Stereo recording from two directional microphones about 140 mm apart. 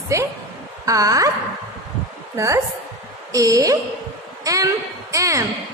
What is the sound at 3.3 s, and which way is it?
A woman's voice, 25° right (ahead or behind).